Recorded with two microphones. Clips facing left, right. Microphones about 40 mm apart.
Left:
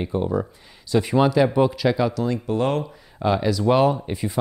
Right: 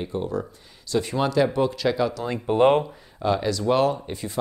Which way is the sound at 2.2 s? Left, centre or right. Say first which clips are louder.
Right 3 dB; right.